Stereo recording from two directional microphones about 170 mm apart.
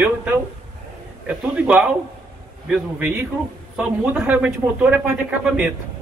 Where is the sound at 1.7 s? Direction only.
5° right (ahead or behind).